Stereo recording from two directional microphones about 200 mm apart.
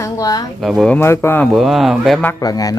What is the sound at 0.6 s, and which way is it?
Speech, centre (ahead or behind).